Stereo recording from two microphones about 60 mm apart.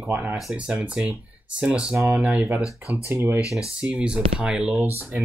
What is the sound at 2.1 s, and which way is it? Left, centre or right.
Speech, centre.